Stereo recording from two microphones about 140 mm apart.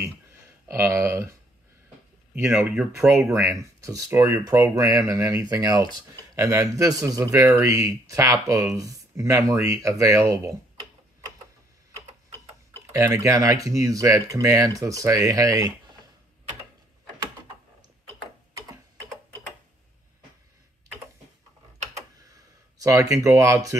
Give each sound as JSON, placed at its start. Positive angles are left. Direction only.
{"t": 0.7, "sound": "speech", "side_deg": -15}
{"t": 2.3, "sound": "speech", "side_deg": -15}
{"t": 2.7, "sound": "speech", "side_deg": 0}
{"t": 3.1, "sound": "speech", "side_deg": -20}
{"t": 12.9, "sound": "speech", "side_deg": -20}
{"t": 22.8, "sound": "speech", "side_deg": -20}